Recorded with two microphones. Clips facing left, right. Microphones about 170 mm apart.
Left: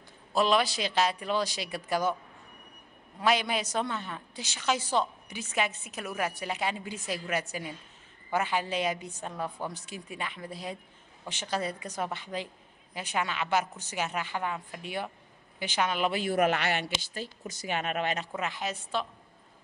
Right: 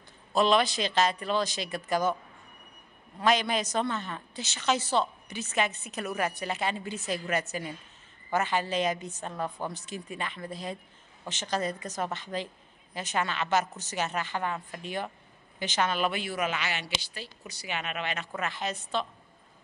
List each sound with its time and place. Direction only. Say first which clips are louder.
0.3 s a woman's voice: right 2 dB; 5° left (ahead or behind)
3.2 s a woman's voice: right 1 dB; 10° left (ahead or behind)
16.1 s a man's voice: left 4 dB; 40° left (ahead or behind)
16.3 s speech: left 5 dB; 60° left (ahead or behind)
17.0 s a woman's voice: left 5 dB; 45° left (ahead or behind)
18.3 s a woman's voice: even; 15° left (ahead or behind)